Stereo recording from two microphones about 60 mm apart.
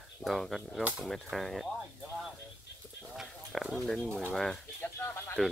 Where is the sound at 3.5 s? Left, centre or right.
Centre.